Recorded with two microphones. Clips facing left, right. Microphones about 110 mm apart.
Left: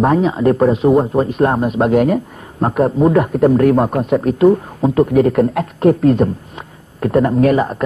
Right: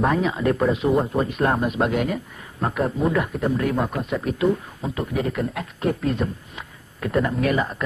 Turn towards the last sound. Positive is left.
turn(degrees=40)  # may be behind; listen again after turning